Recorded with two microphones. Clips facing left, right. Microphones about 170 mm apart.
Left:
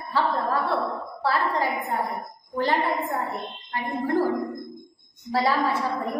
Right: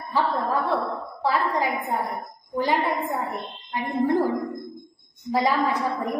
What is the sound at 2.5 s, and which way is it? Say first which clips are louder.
Speech: right 1 dB; 10° right (ahead or behind).